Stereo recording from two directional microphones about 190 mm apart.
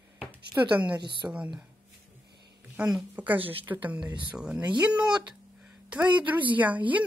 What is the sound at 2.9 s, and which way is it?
Speech, 10° right (ahead or behind).